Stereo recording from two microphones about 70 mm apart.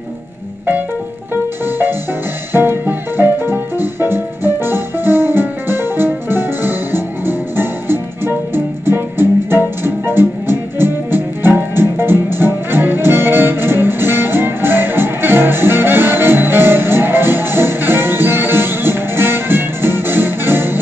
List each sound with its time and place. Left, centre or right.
2.5 s music: right